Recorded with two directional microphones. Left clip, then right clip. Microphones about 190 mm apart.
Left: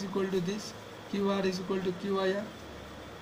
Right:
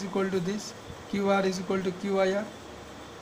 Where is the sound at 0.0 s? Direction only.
40° right (ahead or behind).